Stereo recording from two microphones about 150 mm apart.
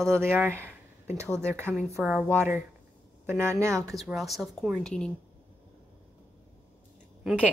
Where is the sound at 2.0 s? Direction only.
5° right (ahead or behind).